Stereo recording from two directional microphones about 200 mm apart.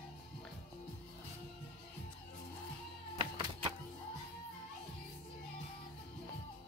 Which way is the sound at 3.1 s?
25° right (ahead or behind).